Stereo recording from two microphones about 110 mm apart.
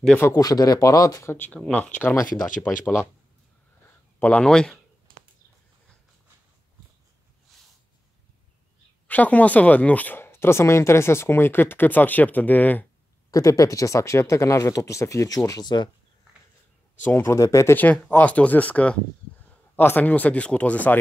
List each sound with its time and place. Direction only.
0.4 s speech: 35° left (ahead or behind)
1.3 s speech: 20° left (ahead or behind)
4.2 s speech: 10° left (ahead or behind)
7.5 s a sound: centre (ahead or behind)
9.0 s speech: 15° left (ahead or behind)
13.3 s speech: 30° left (ahead or behind)
17.0 s speech: 20° left (ahead or behind)
17.7 s speech: 15° left (ahead or behind)